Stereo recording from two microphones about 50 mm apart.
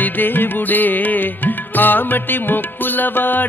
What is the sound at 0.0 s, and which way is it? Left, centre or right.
Music, left.